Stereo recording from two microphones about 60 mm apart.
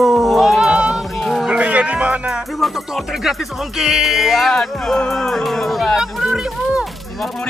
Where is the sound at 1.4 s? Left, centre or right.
Centre.